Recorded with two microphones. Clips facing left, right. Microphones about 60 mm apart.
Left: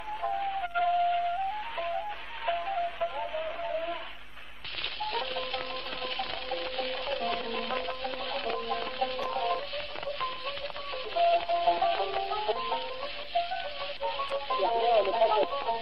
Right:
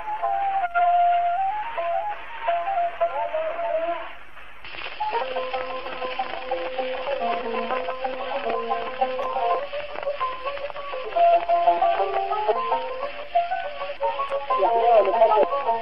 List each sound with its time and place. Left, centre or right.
0.1 s music: right
5.0 s music: right
9.4 s a sound: right
11.3 s music: right